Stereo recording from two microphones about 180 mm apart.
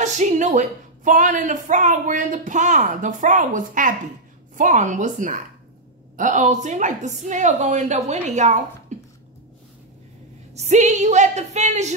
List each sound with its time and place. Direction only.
0.0 s a woman's voice: 40° right (ahead or behind)
10.5 s a woman's voice: 40° right (ahead or behind)